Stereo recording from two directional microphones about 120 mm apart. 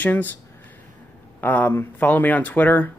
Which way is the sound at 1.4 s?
15° left (ahead or behind).